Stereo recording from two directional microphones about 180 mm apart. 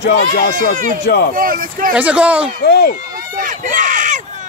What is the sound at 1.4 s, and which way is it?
Speech, 50° right (ahead or behind).